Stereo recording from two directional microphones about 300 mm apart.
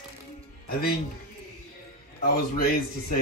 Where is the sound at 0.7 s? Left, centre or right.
Left.